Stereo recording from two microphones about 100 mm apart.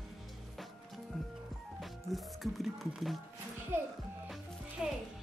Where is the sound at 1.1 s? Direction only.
Centre (ahead or behind).